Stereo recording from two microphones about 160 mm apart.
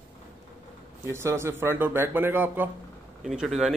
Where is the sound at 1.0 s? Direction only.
15° right (ahead or behind).